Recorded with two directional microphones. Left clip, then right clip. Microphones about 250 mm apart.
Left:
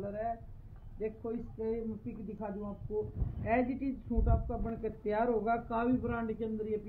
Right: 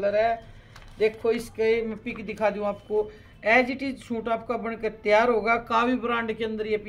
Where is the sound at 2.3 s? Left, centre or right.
Right.